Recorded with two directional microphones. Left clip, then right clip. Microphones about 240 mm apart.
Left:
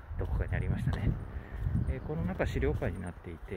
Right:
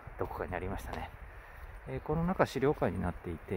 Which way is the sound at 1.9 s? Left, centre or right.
Right.